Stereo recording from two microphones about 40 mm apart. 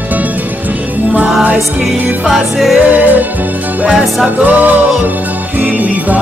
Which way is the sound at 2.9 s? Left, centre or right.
Right.